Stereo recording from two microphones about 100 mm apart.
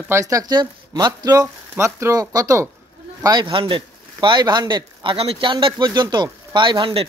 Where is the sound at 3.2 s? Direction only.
45° right (ahead or behind).